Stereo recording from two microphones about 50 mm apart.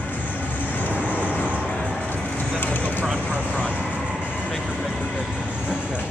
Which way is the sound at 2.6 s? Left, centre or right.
Left.